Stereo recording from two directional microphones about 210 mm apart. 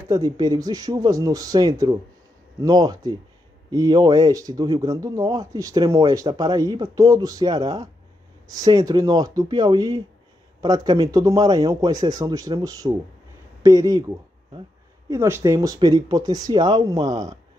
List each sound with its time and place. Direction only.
0.1 s speech: 20° right (ahead or behind)